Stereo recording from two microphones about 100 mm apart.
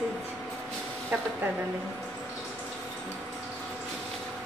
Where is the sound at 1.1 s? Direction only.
15° right (ahead or behind).